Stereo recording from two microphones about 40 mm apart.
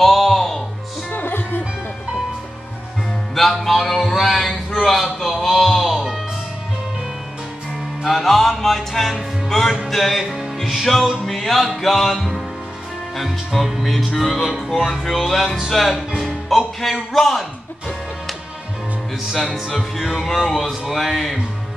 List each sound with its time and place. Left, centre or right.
0.0 s music: centre
1.1 s music: left
3.3 s music: centre
8.0 s music: centre
10.2 s music: centre
19.2 s music: centre